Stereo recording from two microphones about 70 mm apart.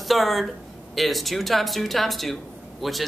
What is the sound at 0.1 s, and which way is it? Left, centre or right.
Speech, centre.